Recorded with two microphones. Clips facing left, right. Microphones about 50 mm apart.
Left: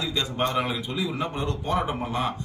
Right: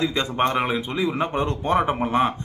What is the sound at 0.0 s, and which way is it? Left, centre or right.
A man's voice, right.